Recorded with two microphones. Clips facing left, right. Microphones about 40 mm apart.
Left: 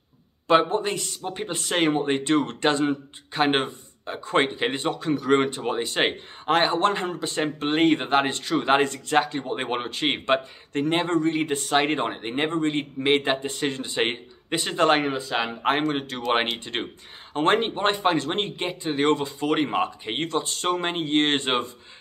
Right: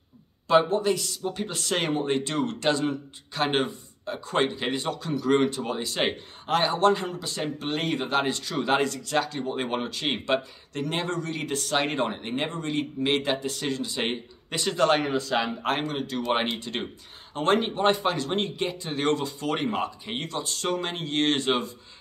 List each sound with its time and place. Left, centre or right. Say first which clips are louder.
0.5 s speech: left 1 dB; left
15.9 s speech: left 2 dB; left